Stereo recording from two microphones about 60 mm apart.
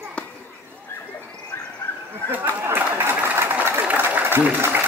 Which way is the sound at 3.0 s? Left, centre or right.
Right.